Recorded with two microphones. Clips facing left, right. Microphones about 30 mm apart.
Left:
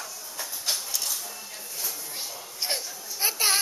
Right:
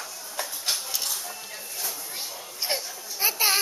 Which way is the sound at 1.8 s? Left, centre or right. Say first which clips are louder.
Right 1 dB; centre.